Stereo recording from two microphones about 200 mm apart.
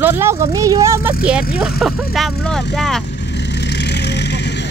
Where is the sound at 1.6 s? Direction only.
Centre (ahead or behind).